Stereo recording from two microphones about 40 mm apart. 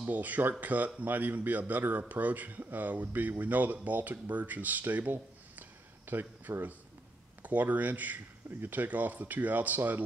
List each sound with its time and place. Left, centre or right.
0.1 s speech: right
5.6 s a sound: right
7.4 s speech: right
8.5 s speech: right
8.7 s speech: right